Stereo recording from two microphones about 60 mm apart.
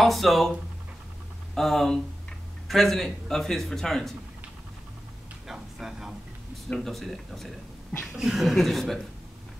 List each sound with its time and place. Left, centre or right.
0.0 s a man's voice: centre
1.5 s a man's voice: centre
5.5 s a sound: centre
6.7 s a man's voice: centre